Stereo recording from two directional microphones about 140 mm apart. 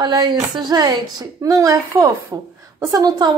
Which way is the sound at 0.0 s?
30° right (ahead or behind).